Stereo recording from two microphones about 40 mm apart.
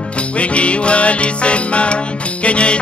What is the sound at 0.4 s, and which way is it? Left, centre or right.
Music, left.